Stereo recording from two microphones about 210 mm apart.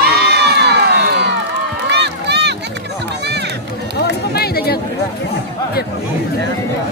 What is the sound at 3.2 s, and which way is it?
Music, 55° right (ahead or behind).